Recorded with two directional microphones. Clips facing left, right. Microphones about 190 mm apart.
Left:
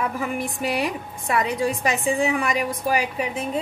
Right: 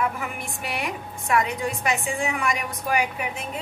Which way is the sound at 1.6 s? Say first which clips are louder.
Left 4 dB; 35° left (ahead or behind).